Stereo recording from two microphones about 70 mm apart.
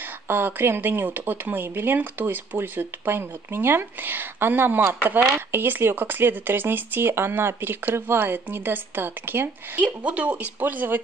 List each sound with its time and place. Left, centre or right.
0.3 s speech: right